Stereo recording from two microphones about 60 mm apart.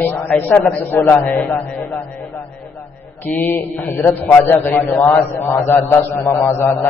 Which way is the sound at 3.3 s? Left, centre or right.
Left.